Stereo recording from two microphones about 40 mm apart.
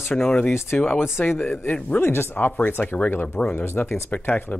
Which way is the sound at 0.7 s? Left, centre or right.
Left.